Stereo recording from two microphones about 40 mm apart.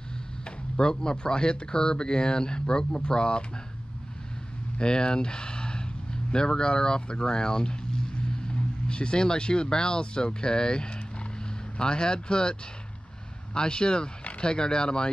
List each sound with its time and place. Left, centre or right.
0.7 s speech: left
4.7 s speech: left
13.6 s speech: left